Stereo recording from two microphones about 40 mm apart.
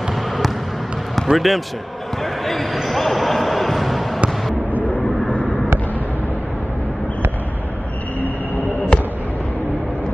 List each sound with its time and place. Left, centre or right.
1.1 s speech: centre
2.4 s basketball bounce: centre
8.9 s basketball bounce: left